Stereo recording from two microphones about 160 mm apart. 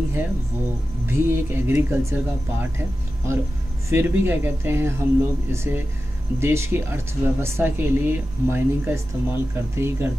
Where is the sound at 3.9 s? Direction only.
15° right (ahead or behind).